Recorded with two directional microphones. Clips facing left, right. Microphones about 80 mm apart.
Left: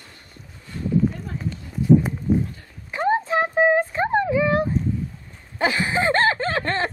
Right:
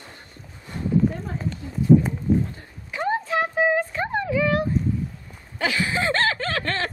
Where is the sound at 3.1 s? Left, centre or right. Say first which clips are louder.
Left 3 dB; left.